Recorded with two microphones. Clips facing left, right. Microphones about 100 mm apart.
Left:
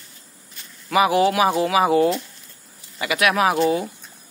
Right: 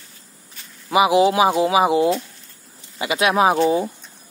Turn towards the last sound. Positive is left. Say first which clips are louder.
# right 2 dB
turn(degrees=-25)  # may be behind; listen again after turning